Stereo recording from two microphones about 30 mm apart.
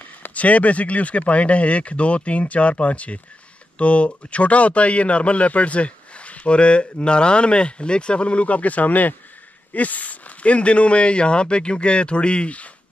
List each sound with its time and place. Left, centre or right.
0.2 s speech: left